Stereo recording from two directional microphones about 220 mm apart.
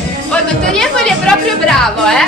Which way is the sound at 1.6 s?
Centre (ahead or behind).